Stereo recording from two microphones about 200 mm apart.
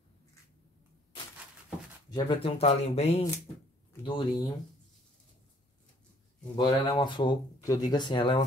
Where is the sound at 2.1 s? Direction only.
30° left (ahead or behind).